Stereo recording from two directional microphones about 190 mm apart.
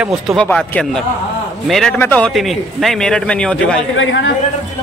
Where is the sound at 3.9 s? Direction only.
80° left.